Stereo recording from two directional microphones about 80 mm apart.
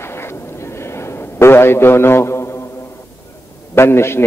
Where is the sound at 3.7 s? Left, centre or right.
Left.